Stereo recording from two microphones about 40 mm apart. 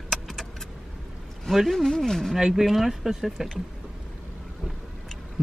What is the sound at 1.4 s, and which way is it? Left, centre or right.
Speech, centre.